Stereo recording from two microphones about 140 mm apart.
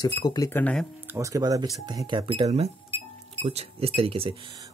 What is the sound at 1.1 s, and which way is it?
Speech, 25° right (ahead or behind).